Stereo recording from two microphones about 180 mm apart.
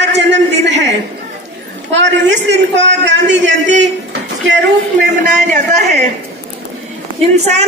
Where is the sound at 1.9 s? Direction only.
85° right.